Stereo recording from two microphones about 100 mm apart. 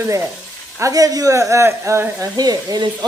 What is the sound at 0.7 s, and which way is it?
Speech, 35° right (ahead or behind).